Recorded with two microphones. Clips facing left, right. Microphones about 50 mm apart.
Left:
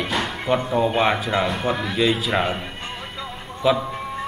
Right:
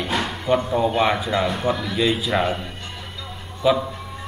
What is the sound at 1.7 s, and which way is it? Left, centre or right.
Speech, left.